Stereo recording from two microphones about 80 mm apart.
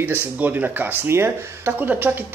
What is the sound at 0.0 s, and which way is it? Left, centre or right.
Speech, right.